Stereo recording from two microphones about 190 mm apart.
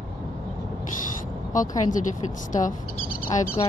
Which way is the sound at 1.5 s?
40° left (ahead or behind).